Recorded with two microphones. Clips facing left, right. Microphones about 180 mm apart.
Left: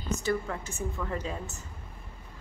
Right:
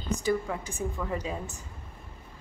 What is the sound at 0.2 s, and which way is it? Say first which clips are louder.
A woman's voice: right 3 dB; 10° right (ahead or behind).